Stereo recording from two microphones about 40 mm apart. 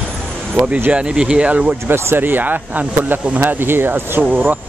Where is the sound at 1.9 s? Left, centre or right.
Right.